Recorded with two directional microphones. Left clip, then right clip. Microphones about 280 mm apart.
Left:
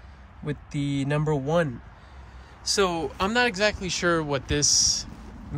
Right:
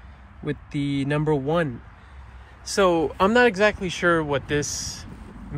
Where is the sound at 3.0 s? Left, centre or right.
Centre.